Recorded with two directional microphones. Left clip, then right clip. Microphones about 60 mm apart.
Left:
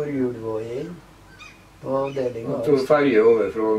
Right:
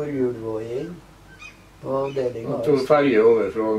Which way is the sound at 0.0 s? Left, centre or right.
Centre.